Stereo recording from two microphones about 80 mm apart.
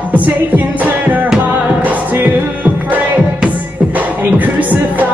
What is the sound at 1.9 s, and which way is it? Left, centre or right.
Music, right.